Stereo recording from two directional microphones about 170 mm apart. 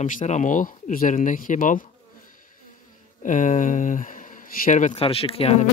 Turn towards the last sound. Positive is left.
turn(degrees=35)  # may be behind; listen again after turning